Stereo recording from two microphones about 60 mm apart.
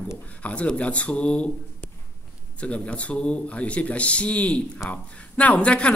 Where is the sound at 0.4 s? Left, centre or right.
Left.